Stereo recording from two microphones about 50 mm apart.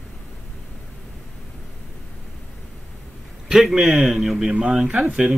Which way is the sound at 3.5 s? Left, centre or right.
Centre.